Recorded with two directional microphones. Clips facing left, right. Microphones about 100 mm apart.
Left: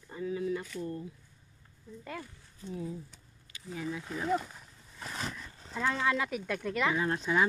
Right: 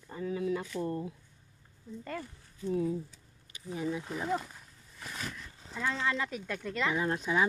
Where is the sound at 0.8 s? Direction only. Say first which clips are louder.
Right 4 dB; 65° right (ahead or behind).